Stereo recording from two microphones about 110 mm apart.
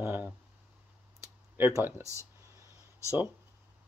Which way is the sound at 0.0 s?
20° right (ahead or behind).